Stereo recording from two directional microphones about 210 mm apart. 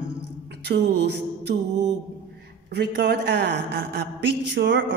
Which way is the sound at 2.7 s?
50° right (ahead or behind).